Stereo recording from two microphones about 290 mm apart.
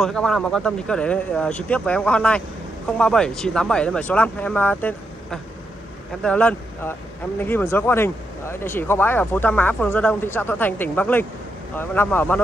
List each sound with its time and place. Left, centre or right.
0.0 s speech: centre